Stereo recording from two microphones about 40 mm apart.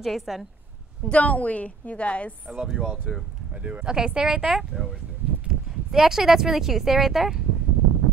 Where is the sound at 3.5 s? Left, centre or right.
Right.